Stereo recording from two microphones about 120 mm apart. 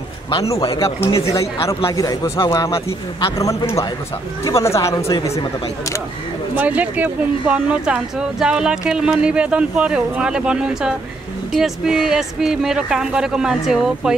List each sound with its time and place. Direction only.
0.6 s speech: 50° left (ahead or behind)
0.8 s speech: 25° left (ahead or behind)
6.5 s speech: 15° right (ahead or behind)